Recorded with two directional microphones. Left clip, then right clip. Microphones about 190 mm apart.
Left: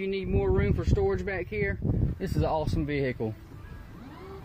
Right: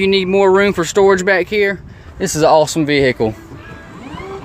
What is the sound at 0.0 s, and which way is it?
Speech, 30° right (ahead or behind).